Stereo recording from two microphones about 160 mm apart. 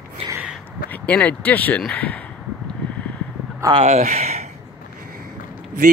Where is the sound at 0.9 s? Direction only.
10° left (ahead or behind).